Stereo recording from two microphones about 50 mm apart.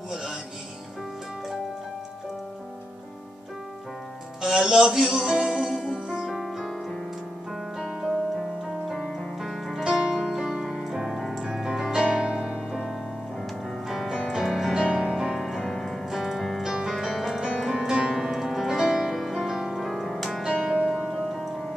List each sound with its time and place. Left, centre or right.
0.1 s music: centre
4.4 s music: centre
7.8 s music: centre
9.8 s keyboard: centre
11.4 s music: centre
13.8 s music: centre
16.6 s music: centre
20.4 s music: centre